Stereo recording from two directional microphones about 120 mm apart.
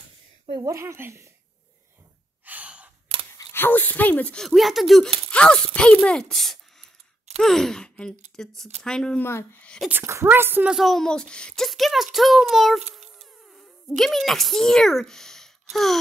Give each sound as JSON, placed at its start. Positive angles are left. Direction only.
{"t": 0.5, "sound": "speech", "side_deg": -30}
{"t": 2.4, "sound": "sigh", "side_deg": -15}
{"t": 3.5, "sound": "speech", "side_deg": 15}
{"t": 4.5, "sound": "speech", "side_deg": 0}
{"t": 9.2, "sound": "speech", "side_deg": 20}
{"t": 9.8, "sound": "a woman's voice", "side_deg": -20}
{"t": 10.7, "sound": "speech", "side_deg": 0}
{"t": 12.9, "sound": "music", "side_deg": 0}
{"t": 13.9, "sound": "speech", "side_deg": 0}